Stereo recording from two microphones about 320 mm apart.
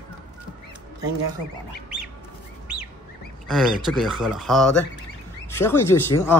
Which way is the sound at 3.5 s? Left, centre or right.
Centre.